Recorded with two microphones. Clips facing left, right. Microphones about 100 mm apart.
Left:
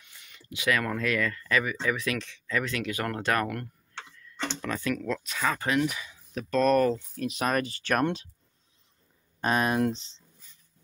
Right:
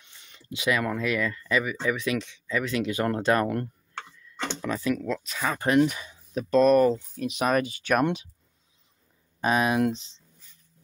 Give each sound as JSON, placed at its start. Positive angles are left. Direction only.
{"t": 0.0, "sound": "speech", "side_deg": -25}
{"t": 2.7, "sound": "speech", "side_deg": -25}
{"t": 4.6, "sound": "speech", "side_deg": -10}
{"t": 5.7, "sound": "speech", "side_deg": -35}
{"t": 6.3, "sound": "speech", "side_deg": -15}
{"t": 9.4, "sound": "speech", "side_deg": -10}